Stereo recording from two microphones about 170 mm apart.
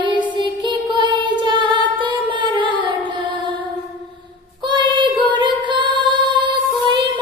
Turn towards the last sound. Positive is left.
turn(degrees=-30)  # may be behind; listen again after turning